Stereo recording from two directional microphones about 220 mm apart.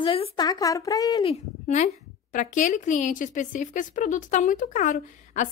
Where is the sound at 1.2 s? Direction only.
30° left (ahead or behind).